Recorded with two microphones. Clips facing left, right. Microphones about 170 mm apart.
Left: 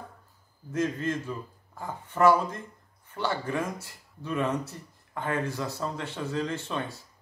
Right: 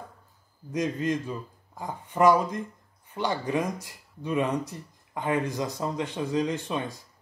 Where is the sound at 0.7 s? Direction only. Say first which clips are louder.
Right 1 dB; 15° right (ahead or behind).